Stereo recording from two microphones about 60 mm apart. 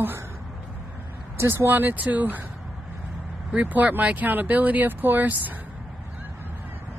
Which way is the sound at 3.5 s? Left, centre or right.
Right.